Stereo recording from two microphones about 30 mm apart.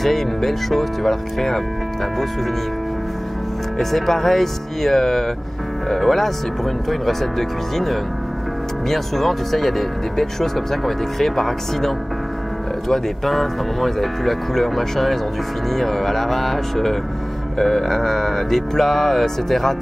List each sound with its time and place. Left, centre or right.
0.0 s speech: centre
3.7 s speech: centre